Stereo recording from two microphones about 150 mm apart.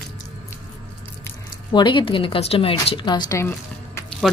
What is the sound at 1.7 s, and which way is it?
A woman's voice, 30° left (ahead or behind).